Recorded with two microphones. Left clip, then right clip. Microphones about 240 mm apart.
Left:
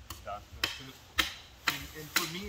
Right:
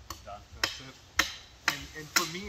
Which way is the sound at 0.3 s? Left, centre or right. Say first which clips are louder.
Left 6 dB; centre.